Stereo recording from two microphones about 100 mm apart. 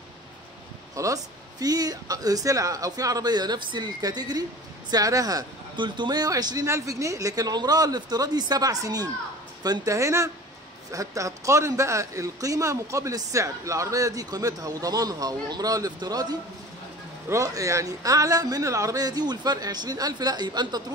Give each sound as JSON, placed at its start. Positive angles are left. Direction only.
{"t": 0.9, "sound": "a man's voice", "side_deg": -35}
{"t": 5.8, "sound": "a man's voice", "side_deg": -50}